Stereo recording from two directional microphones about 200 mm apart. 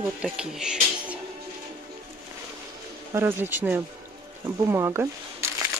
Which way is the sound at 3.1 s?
10° right (ahead or behind).